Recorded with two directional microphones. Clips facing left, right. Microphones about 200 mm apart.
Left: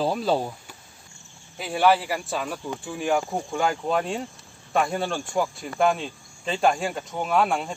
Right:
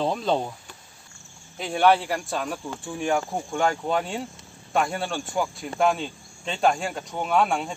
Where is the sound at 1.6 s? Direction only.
5° left (ahead or behind).